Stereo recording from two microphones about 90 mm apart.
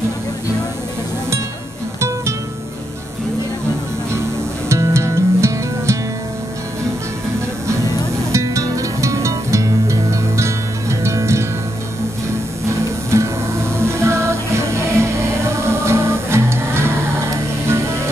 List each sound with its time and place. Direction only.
2.0 s music: 30° right (ahead or behind)
4.6 s music: 30° right (ahead or behind)
8.3 s music: 35° right (ahead or behind)
12.6 s music: 30° right (ahead or behind)